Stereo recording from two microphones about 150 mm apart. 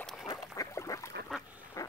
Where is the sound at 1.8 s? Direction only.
25° left (ahead or behind).